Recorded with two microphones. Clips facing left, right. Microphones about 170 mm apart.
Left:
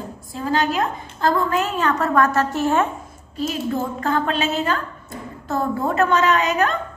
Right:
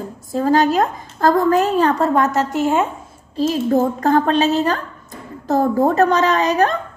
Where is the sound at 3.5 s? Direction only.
40° right (ahead or behind).